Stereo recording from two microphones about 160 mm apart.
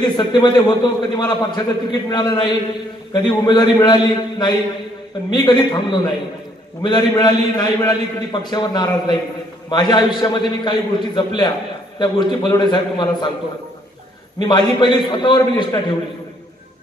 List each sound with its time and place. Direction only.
0.0 s a man's voice: 25° left (ahead or behind)
14.4 s a man's voice: 30° left (ahead or behind)